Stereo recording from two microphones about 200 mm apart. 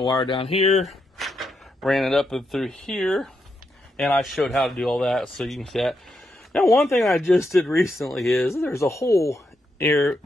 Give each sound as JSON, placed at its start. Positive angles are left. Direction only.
{"t": 0.0, "sound": "speech", "side_deg": 25}
{"t": 0.8, "sound": "speech", "side_deg": 0}
{"t": 7.2, "sound": "speech", "side_deg": 15}
{"t": 8.0, "sound": "speech", "side_deg": 0}
{"t": 8.5, "sound": "speech", "side_deg": 15}